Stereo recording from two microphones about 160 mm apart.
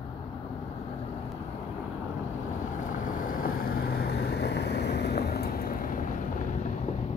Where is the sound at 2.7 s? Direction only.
55° left (ahead or behind).